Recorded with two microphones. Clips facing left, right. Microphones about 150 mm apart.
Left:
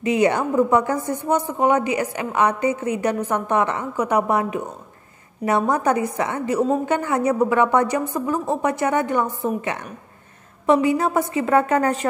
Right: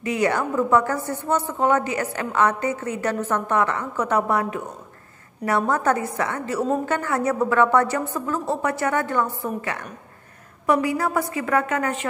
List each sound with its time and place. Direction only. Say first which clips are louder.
0.0 s a woman's voice: left 3 dB; 20° left (ahead or behind); by 12.1 s 35° left (ahead or behind)